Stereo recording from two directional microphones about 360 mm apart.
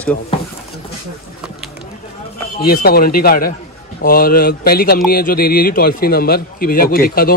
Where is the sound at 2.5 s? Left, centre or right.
Left.